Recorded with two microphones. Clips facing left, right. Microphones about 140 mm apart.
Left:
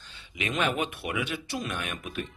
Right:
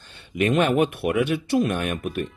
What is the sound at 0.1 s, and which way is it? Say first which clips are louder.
Speech: right 12 dB; 55° right (ahead or behind).